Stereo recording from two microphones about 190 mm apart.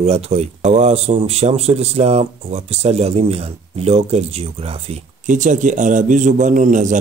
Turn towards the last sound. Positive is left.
turn(degrees=-40)  # may be behind; listen again after turning